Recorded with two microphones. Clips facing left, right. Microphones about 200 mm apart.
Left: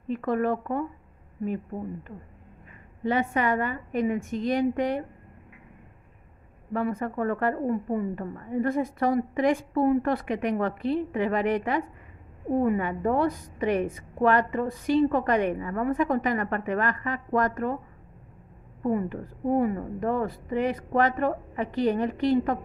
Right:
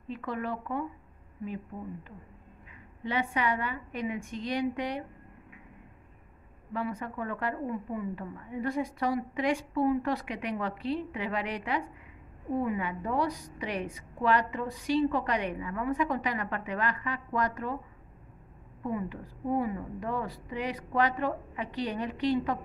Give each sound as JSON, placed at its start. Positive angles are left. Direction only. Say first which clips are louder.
{"t": 0.1, "sound": "a woman's voice", "louder": "left 9 dB", "side_deg": 50}
{"t": 3.0, "sound": "a woman's voice", "louder": "left 5 dB", "side_deg": 50}
{"t": 6.7, "sound": "a woman's voice", "louder": "left 6 dB", "side_deg": 50}
{"t": 18.8, "sound": "a woman's voice", "louder": "left 7 dB", "side_deg": 50}